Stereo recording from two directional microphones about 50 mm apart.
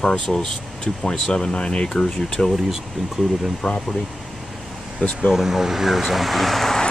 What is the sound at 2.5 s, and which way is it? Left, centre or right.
Speech, centre.